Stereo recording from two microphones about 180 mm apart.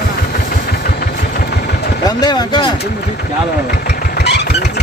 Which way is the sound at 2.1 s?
20° left (ahead or behind).